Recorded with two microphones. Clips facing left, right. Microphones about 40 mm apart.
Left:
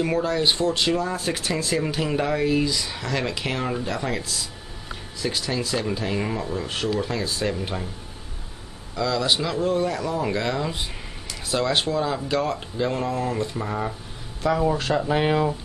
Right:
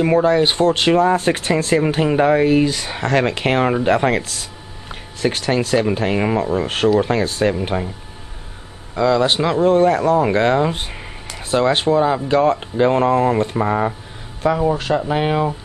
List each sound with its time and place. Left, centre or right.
0.0 s speech: right
7.5 s speech: right
8.9 s speech: right
14.5 s speech: centre